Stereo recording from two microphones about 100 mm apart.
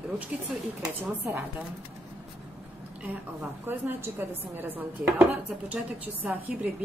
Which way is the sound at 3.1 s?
20° right (ahead or behind).